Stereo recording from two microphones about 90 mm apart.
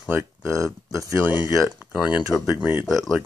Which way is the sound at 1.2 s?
20° right (ahead or behind).